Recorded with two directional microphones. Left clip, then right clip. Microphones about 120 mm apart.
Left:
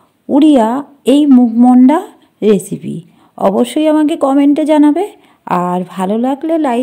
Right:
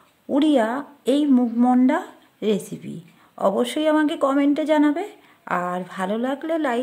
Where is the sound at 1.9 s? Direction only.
45° left (ahead or behind).